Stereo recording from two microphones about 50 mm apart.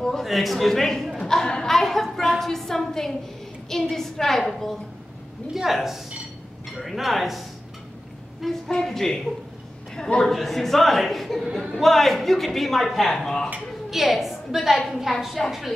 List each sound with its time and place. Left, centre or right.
0.0 s a sound: centre
0.3 s a man's voice: centre
8.6 s a woman's voice: centre
9.9 s a man's voice: centre
10.2 s a man's voice: centre
13.1 s a woman's voice: centre
13.8 s a woman's voice: centre